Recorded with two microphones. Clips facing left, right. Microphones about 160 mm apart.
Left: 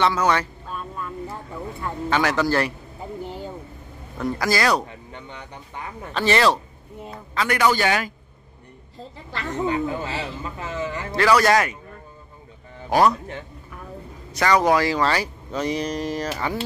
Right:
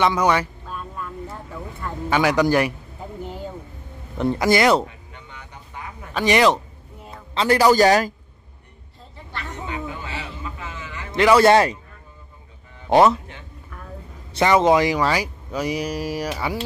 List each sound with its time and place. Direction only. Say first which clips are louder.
0.0 s speech: right 2 dB; 15° right (ahead or behind)
0.7 s vehicle: left 1 dB; centre (ahead or behind)
2.0 s speech: right 3 dB; 10° right (ahead or behind)
4.2 s a man's voice: right 4 dB; 25° right (ahead or behind)
4.8 s a sound: left 3 dB; 30° left (ahead or behind)
6.1 s speech: right 2 dB; 15° right (ahead or behind)
7.3 s a man's voice: right 5 dB; 30° right (ahead or behind)
9.1 s a sound: left 2 dB; 90° left
9.7 s a sound: left 7 dB; 35° left (ahead or behind)
11.1 s a man's voice: right 4 dB; 20° right (ahead or behind)
12.9 s a man's voice: right 3 dB; 25° right (ahead or behind)
14.3 s speech: right 2 dB; 20° right (ahead or behind)